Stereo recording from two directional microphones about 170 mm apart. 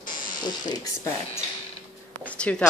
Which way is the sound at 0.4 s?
25° left (ahead or behind).